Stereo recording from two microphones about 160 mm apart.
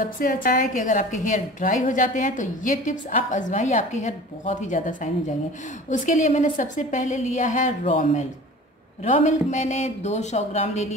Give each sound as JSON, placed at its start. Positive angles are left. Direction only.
{"t": 0.2, "sound": "a woman's voice", "side_deg": 60}